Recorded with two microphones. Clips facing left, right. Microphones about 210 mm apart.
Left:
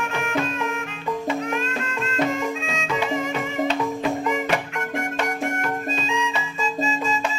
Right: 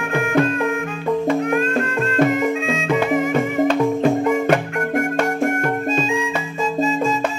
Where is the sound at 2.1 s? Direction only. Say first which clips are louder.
Right 6 dB; 55° right (ahead or behind).